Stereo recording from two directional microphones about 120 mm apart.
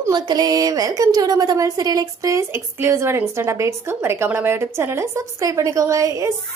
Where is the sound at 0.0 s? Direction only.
35° right (ahead or behind).